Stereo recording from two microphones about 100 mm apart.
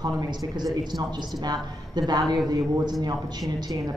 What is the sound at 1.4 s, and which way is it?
Speech, 45° right (ahead or behind).